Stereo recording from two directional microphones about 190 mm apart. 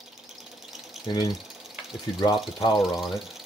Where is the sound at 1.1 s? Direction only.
20° left (ahead or behind).